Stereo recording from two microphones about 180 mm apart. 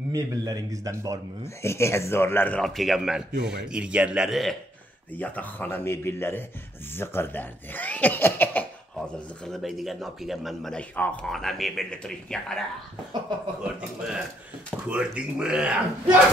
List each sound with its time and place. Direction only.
0.1 s a man's voice: 20° right (ahead or behind)
1.4 s a man's voice: 15° left (ahead or behind)
13.7 s speech: 5° right (ahead or behind)